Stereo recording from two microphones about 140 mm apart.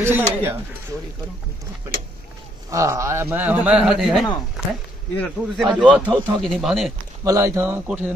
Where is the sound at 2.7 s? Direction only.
20° right (ahead or behind); by 6.9 s centre (ahead or behind).